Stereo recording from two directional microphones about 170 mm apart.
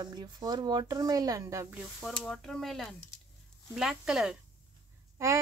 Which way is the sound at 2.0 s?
5° left (ahead or behind).